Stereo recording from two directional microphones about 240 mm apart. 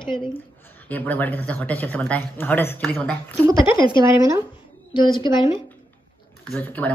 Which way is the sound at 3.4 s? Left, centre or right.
Centre.